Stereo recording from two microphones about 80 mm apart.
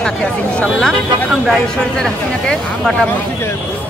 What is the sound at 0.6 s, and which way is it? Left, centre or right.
A woman's voice, centre.